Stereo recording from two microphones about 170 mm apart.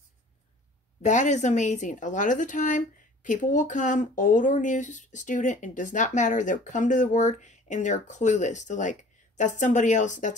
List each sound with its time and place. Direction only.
1.0 s speech: 45° left (ahead or behind)